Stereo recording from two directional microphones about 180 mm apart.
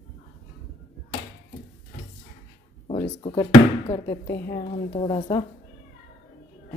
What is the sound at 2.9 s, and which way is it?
Speech, 30° left (ahead or behind).